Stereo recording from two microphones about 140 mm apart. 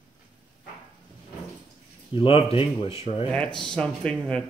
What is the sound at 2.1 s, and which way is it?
Speech, 40° left (ahead or behind).